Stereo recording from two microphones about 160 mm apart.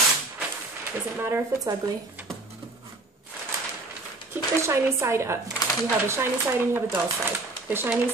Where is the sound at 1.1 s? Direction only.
15° right (ahead or behind).